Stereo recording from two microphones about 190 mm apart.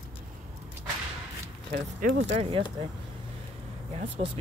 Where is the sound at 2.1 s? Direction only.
70° right (ahead or behind).